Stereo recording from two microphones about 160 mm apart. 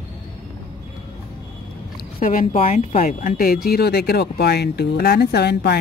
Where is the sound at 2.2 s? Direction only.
55° left (ahead or behind).